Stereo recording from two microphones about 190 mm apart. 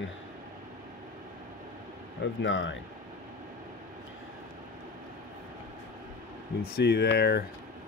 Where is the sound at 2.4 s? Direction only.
85° left.